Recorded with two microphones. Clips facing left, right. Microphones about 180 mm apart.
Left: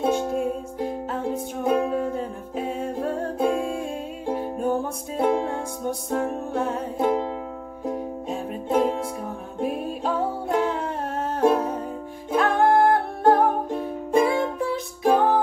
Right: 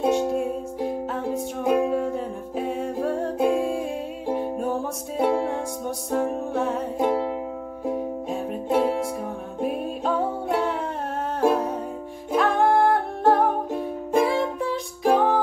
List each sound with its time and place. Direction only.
0.1 s music: centre (ahead or behind)